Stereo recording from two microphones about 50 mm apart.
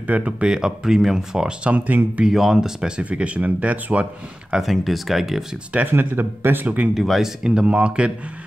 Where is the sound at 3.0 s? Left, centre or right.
Right.